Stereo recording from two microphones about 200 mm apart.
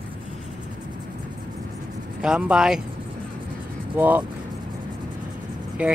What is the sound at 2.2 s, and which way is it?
Speech, 5° right (ahead or behind).